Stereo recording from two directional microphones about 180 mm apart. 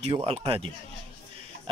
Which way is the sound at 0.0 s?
35° right (ahead or behind).